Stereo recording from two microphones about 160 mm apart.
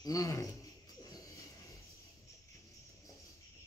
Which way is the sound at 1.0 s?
20° left (ahead or behind).